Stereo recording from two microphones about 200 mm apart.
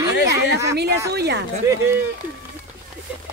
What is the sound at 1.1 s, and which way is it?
Speech, 55° right (ahead or behind).